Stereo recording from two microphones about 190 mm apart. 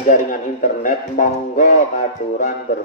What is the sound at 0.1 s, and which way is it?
A man's voice, 45° left (ahead or behind).